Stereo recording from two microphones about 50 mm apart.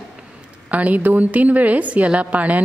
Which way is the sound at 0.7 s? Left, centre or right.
Right.